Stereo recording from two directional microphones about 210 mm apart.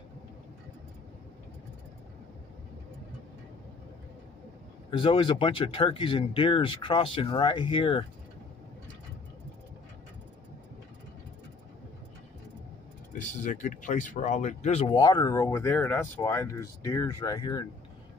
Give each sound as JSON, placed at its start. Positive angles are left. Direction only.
{"t": 4.9, "sound": "speech", "side_deg": 25}
{"t": 13.2, "sound": "speech", "side_deg": 35}